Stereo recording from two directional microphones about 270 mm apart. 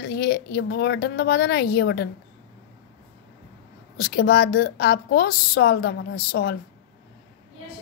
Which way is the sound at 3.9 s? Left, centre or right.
Left.